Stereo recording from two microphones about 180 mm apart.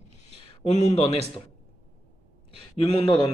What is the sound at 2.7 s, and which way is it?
Speech, 35° left (ahead or behind).